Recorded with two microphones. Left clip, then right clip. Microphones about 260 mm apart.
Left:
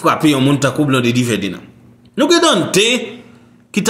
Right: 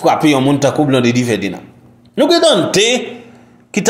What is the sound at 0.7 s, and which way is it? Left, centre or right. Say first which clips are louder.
Speech: right 2 dB; centre.